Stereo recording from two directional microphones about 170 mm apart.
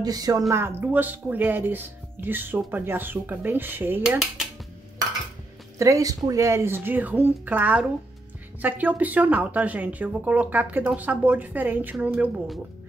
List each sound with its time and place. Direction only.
0.0 s speech: 20° right (ahead or behind)
5.8 s speech: 20° right (ahead or behind)